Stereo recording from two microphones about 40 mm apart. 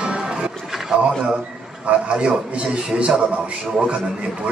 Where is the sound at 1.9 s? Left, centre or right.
Right.